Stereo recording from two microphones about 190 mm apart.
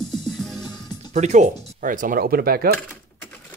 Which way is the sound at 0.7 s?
20° left (ahead or behind).